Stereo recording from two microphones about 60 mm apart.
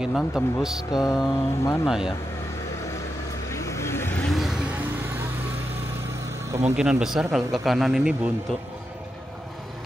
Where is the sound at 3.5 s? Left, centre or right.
Left.